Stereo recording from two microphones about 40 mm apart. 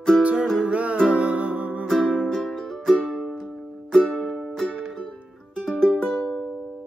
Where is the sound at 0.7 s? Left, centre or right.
Right.